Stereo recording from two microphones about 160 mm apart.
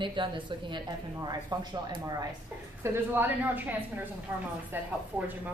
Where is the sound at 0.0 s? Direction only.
30° right (ahead or behind).